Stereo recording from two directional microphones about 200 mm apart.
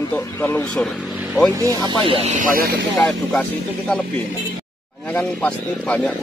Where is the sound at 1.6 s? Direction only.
20° right (ahead or behind); by 2.9 s 50° right (ahead or behind).